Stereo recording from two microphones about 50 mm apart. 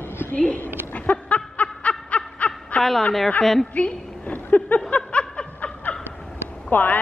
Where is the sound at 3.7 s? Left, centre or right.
Left.